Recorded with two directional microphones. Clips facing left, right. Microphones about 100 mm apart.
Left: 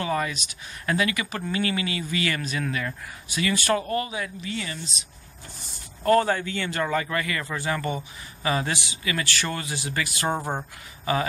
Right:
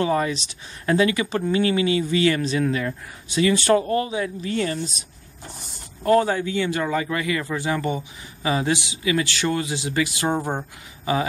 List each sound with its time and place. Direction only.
0.0 s speech: 25° right (ahead or behind)
4.4 s speech: 45° right (ahead or behind)
6.0 s a man's voice: 10° right (ahead or behind)